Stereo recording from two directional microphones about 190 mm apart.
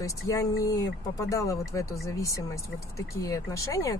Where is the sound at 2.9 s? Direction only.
15° left (ahead or behind).